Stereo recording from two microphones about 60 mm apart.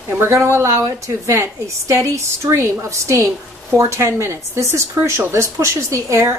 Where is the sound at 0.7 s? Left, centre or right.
Right.